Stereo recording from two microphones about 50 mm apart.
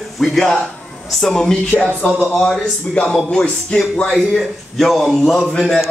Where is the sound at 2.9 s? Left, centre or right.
Centre.